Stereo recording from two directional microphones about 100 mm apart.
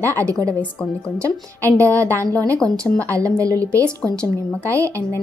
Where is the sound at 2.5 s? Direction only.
5° left (ahead or behind).